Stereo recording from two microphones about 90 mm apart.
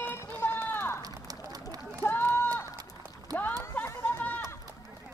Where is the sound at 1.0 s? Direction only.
45° right (ahead or behind).